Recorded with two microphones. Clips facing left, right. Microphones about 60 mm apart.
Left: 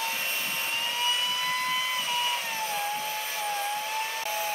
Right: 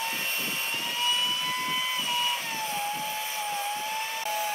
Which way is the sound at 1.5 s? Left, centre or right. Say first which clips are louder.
Left 1 dB; centre.